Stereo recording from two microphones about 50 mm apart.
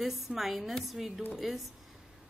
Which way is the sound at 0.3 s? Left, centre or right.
Centre.